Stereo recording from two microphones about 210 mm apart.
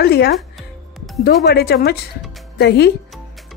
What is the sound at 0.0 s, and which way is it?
A woman's voice, 50° left (ahead or behind).